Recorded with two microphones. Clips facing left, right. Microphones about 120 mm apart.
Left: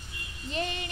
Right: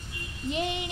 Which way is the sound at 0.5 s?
15° right (ahead or behind).